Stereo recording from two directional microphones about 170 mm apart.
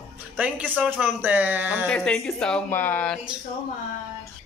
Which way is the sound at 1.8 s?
5° left (ahead or behind).